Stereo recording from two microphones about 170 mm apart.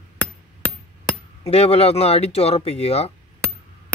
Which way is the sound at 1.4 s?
35° left (ahead or behind).